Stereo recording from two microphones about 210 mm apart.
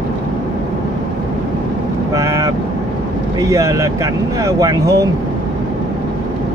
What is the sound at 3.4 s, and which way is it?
Speech, 15° right (ahead or behind).